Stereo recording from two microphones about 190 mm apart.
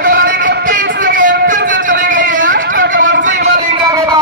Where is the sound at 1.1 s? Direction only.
45° right (ahead or behind).